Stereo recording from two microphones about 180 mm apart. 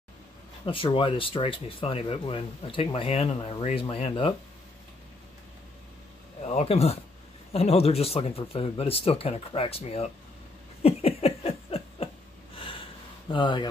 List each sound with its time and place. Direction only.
0.7 s speech: 30° left (ahead or behind)
6.4 s speech: 35° left (ahead or behind)
10.8 s a sound: 35° left (ahead or behind)
12.5 s snort: 30° left (ahead or behind)
13.3 s speech: 25° left (ahead or behind)